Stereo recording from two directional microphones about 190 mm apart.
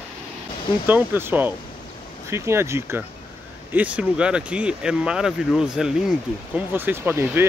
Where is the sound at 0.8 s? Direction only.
10° right (ahead or behind).